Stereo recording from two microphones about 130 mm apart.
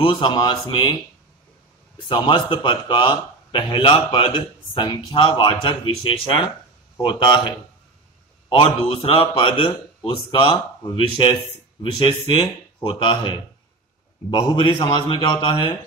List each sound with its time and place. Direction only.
0.0 s speech: 40° left (ahead or behind)
2.2 s speech: 40° left (ahead or behind)